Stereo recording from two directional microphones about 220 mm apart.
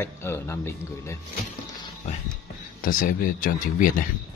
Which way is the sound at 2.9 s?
40° left (ahead or behind).